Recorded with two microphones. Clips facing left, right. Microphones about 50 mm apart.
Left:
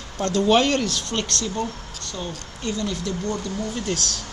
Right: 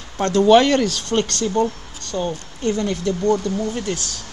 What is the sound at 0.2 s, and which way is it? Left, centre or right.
Speech, right.